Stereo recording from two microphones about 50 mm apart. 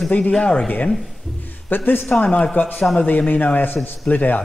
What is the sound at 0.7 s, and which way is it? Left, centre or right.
A man's voice, left.